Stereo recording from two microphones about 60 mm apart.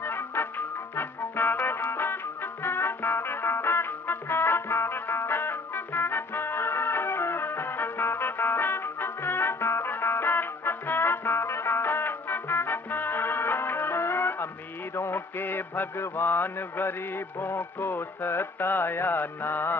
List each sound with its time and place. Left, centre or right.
0.0 s music: left